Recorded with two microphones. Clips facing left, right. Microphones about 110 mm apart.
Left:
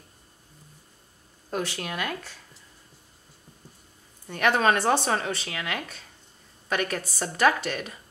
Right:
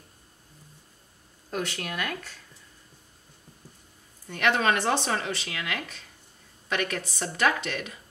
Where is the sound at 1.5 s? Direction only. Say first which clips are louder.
Left 1 dB; 30° left (ahead or behind).